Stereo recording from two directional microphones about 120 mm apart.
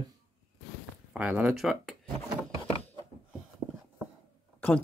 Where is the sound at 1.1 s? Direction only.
10° right (ahead or behind).